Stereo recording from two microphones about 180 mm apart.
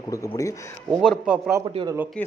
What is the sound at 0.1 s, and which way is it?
Speech, 20° left (ahead or behind).